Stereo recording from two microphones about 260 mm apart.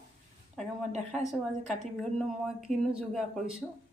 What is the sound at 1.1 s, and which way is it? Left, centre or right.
Speech, right.